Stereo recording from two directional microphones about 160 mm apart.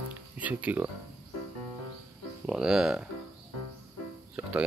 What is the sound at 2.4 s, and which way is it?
Speech, 5° right (ahead or behind).